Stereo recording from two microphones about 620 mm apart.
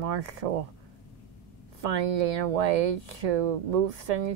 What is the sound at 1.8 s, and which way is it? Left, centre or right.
Speech, right.